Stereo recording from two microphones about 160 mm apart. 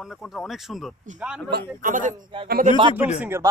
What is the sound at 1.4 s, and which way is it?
Speech, 85° right.